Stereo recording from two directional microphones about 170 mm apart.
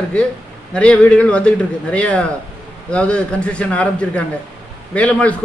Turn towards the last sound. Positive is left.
turn(degrees=5)  # may be behind; listen again after turning